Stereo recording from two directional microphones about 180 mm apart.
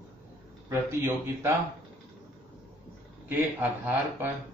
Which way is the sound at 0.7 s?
15° right (ahead or behind).